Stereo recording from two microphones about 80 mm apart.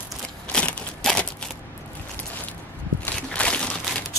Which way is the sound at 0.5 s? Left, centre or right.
Centre.